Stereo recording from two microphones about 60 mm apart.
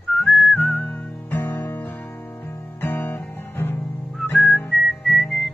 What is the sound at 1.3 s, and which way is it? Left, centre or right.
Guitar, left.